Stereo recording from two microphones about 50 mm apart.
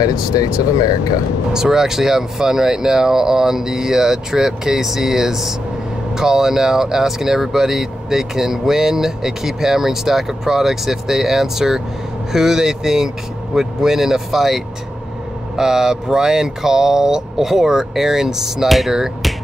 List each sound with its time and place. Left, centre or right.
0.1 s speech: centre